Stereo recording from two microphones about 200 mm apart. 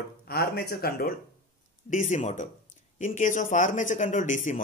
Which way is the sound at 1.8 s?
40° left (ahead or behind).